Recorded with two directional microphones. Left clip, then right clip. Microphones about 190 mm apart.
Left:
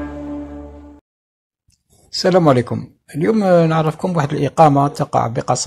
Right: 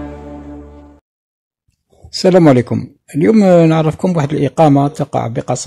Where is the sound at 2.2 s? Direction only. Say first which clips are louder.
Right 4 dB; 40° right (ahead or behind).